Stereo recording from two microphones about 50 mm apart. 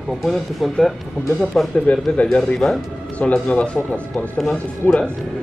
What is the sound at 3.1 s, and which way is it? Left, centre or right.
Speech, left.